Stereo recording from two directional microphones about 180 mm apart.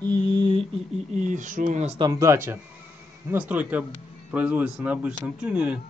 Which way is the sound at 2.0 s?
20° right (ahead or behind).